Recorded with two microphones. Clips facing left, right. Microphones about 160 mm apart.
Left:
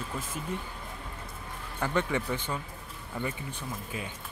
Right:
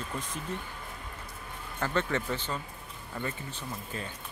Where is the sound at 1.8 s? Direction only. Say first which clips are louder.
Left 1 dB; 10° left (ahead or behind).